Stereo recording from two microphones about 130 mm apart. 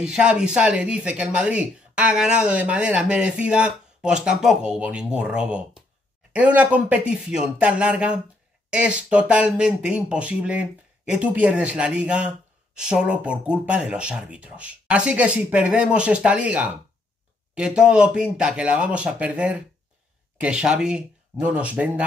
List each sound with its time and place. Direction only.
0.0 s speech: 5° right (ahead or behind)